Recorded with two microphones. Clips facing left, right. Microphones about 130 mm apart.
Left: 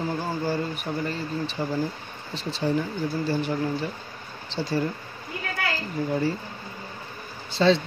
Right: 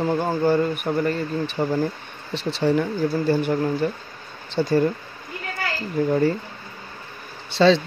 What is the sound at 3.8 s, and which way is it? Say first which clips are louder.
Speech: right 7 dB; 50° right (ahead or behind).